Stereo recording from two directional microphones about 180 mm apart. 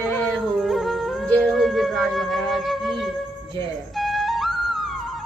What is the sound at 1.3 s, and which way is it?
Music, centre (ahead or behind).